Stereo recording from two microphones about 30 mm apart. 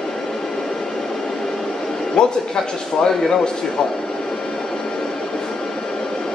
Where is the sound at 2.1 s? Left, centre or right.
Left.